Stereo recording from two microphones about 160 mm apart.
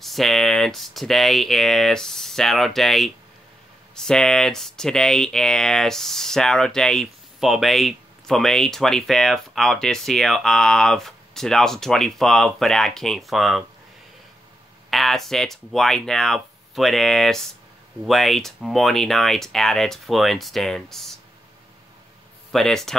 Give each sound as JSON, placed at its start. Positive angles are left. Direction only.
{"t": 0.0, "sound": "speech", "side_deg": 0}
{"t": 14.9, "sound": "speech", "side_deg": 0}
{"t": 22.5, "sound": "speech", "side_deg": 0}